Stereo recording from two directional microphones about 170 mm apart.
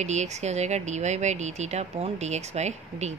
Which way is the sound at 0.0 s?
40° right (ahead or behind).